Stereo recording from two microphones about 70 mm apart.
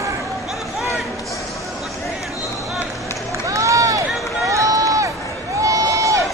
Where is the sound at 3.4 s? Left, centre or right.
Right.